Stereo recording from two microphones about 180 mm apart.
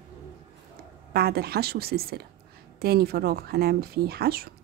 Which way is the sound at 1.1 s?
60° right (ahead or behind).